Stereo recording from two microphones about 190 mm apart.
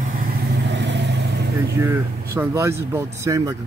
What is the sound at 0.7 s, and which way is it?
Vehicle, 65° right (ahead or behind).